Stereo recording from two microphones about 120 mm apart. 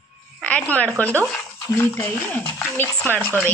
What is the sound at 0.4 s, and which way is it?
Speech, 10° left (ahead or behind).